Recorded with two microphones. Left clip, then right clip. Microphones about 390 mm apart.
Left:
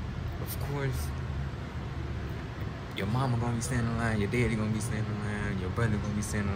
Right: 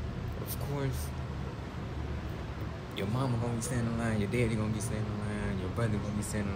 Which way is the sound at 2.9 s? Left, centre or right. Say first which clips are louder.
Left 2 dB; centre.